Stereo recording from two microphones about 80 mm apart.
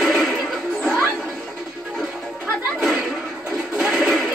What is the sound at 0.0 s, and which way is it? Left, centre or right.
Music, centre.